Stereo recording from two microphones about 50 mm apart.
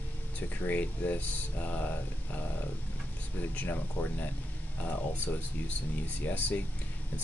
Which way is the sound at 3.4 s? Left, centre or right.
Left.